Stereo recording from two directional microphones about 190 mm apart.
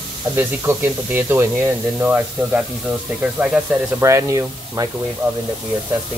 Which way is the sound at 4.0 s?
15° right (ahead or behind).